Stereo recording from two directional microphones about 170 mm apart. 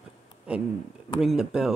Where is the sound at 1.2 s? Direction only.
Centre (ahead or behind).